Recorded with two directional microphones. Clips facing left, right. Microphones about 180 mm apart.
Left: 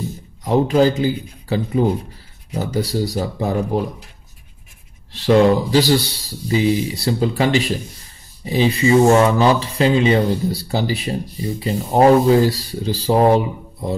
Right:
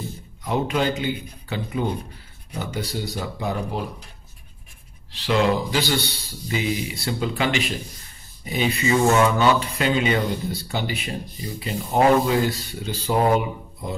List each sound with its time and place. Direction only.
0.4 s speech: 35° left (ahead or behind)
5.2 s speech: 40° left (ahead or behind)